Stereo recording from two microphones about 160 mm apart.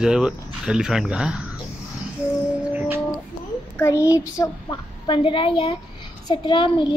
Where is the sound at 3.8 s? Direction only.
15° left (ahead or behind).